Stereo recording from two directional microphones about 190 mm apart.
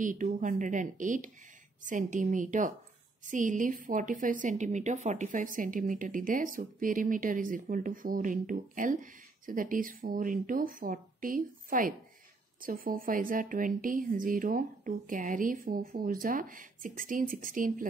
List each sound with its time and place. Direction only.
0.0 s a woman's voice: 45° right (ahead or behind)